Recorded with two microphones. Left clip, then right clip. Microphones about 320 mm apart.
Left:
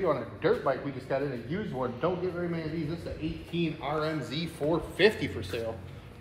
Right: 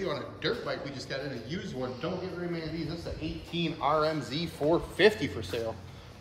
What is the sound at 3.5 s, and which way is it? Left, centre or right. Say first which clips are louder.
A man's voice: right 4 dB; centre.